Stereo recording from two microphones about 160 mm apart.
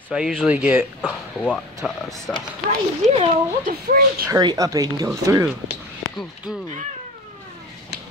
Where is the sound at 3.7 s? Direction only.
70° right (ahead or behind).